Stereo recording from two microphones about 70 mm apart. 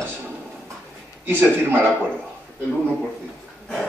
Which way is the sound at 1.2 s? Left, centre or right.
Right.